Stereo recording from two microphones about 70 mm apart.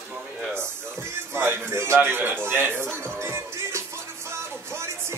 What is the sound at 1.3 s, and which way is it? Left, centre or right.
Speech, right.